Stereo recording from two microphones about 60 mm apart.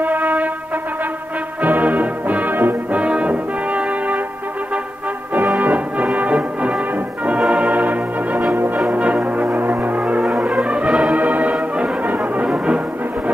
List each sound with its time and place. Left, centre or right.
0.0 s music: right
1.6 s music: right
3.0 s brass instrument: right
5.6 s music: right